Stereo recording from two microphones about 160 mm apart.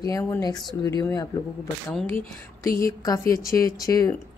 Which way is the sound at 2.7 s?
20° left (ahead or behind).